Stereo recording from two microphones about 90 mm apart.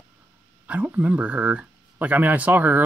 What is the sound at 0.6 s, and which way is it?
Speech, 15° right (ahead or behind).